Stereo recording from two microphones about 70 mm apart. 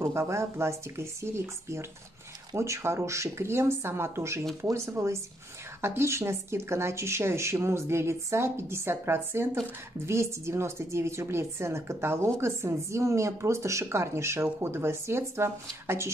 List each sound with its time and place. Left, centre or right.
0.0 s a woman's voice: right